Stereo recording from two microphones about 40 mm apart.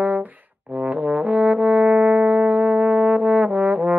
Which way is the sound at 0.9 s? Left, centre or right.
Right.